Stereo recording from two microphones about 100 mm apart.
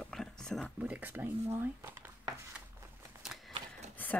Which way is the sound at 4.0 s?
20° left (ahead or behind).